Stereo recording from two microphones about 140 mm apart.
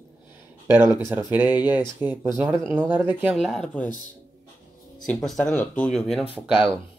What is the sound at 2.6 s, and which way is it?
Speech, 5° left (ahead or behind).